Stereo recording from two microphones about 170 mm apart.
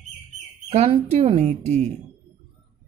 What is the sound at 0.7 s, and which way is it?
Speech, 35° right (ahead or behind).